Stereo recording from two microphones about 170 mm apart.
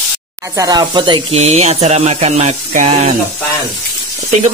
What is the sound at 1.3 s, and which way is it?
Speech, 40° right (ahead or behind).